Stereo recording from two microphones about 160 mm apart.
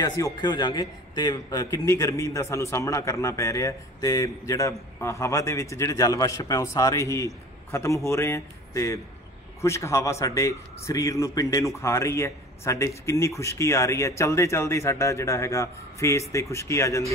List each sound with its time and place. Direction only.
0.0 s a man's voice: 25° left (ahead or behind)